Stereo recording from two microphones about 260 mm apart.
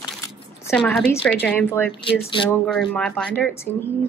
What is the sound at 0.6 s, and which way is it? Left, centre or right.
A woman's voice, centre.